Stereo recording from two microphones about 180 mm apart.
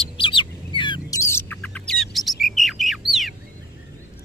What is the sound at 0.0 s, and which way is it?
Bird, 30° left (ahead or behind).